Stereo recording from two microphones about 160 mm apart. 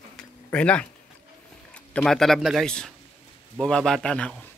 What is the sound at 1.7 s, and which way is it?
Speech, 5° left (ahead or behind).